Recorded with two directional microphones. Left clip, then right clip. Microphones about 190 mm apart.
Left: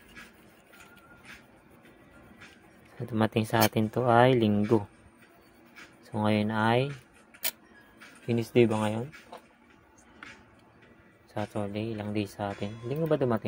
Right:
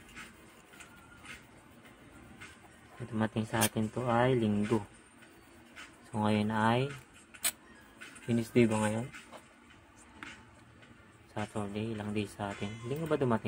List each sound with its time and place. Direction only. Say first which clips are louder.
3.2 s speech: left 7 dB; 40° left (ahead or behind)
6.1 s speech: left 3 dB; 30° left (ahead or behind)
8.3 s speech: left 4 dB; 25° left (ahead or behind)
11.3 s speech: left 4 dB; 30° left (ahead or behind)